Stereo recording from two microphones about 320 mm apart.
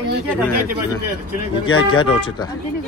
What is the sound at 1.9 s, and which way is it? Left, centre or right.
Speech, centre.